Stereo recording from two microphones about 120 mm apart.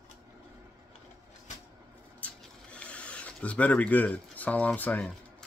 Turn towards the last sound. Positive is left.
turn(degrees=15)  # may be behind; listen again after turning